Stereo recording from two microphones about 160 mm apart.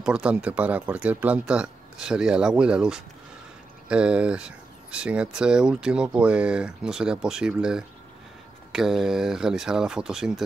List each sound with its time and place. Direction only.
0.0 s speech: 5° right (ahead or behind)